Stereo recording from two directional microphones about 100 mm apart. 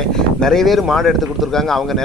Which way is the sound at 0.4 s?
5° left (ahead or behind).